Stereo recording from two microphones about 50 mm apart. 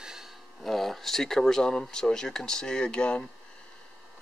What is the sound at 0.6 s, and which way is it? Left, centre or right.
Speech, centre.